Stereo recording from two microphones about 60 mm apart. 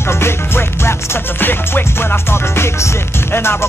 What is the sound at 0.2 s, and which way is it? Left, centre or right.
Music, left.